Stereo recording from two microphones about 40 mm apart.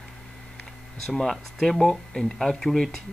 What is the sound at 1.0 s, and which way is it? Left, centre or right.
Speech, centre.